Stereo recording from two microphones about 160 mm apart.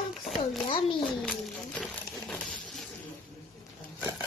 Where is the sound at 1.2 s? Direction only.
5° left (ahead or behind).